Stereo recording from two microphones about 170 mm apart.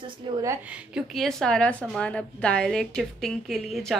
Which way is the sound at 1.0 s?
Centre (ahead or behind).